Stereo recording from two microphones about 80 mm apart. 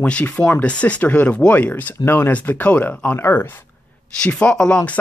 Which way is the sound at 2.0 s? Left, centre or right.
Left.